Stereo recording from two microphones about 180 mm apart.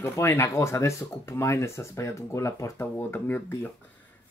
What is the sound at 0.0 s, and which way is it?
Speech, 15° left (ahead or behind).